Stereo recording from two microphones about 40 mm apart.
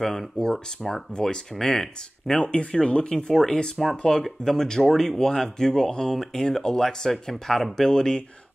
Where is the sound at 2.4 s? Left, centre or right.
Left.